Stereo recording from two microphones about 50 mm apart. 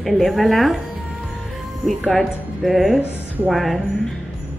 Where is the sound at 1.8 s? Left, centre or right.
Centre.